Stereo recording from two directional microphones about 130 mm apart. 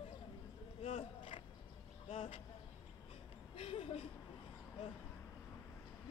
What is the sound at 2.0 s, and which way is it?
Vehicle, 45° left (ahead or behind).